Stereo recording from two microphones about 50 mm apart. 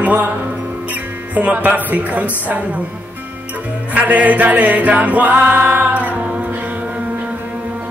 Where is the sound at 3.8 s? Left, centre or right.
Right.